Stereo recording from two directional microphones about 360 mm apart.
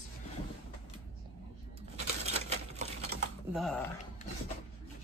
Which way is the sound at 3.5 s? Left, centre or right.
Centre.